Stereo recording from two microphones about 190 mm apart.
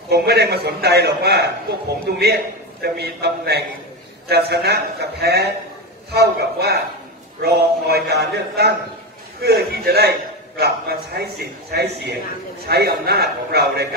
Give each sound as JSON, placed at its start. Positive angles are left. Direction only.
{"t": 0.1, "sound": "a man's voice", "side_deg": -60}